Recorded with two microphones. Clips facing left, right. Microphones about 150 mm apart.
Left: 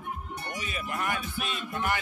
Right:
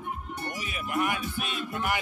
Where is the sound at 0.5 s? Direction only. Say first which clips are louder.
Right 3 dB; 10° right (ahead or behind).